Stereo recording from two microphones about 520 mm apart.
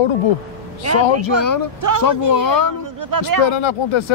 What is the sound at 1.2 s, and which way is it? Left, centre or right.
Speech, left.